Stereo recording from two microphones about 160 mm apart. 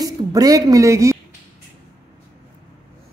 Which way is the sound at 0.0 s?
25° right (ahead or behind).